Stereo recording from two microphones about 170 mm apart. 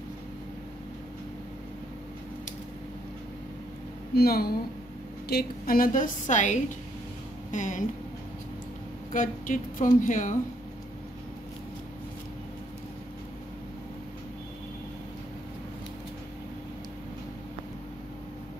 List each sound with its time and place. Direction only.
4.1 s a woman's voice: 65° left (ahead or behind); by 7.8 s 50° left (ahead or behind)
9.1 s a woman's voice: 50° left (ahead or behind)